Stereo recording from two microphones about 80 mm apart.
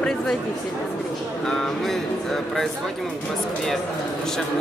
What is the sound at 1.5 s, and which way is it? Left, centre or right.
Speech, centre.